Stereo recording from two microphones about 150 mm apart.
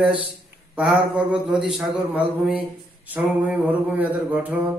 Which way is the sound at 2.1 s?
10° right (ahead or behind).